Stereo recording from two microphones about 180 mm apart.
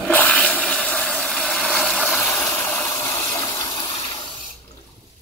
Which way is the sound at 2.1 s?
10° left (ahead or behind).